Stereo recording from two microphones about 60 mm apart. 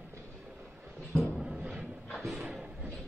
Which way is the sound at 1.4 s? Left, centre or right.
Centre.